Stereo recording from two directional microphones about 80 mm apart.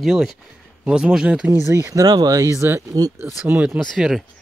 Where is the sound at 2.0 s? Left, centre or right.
Right.